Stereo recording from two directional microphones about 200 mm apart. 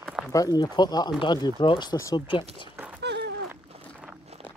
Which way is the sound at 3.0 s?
60° right (ahead or behind).